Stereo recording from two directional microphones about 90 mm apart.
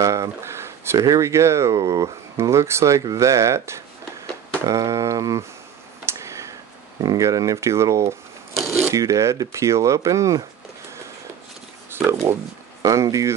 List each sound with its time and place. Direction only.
0.0 s a sound: 35° right (ahead or behind)
0.9 s speech: 40° right (ahead or behind)
6.0 s a sound: 35° right (ahead or behind)
7.0 s speech: 45° right (ahead or behind)
11.9 s speech: 30° right (ahead or behind)
12.8 s speech: 40° right (ahead or behind)